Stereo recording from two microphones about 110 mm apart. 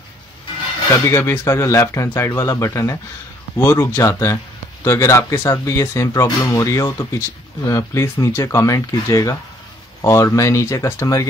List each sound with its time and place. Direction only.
1.1 s speech: 25° left (ahead or behind)